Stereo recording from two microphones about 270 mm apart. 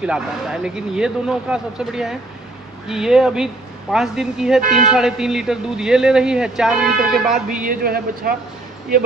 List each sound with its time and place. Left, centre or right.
0.0 s a man's voice: centre
7.6 s speech: right